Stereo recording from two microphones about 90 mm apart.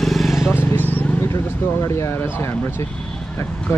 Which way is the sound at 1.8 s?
30° left (ahead or behind).